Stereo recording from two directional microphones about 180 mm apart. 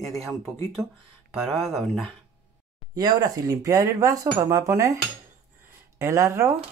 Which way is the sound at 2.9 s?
20° right (ahead or behind).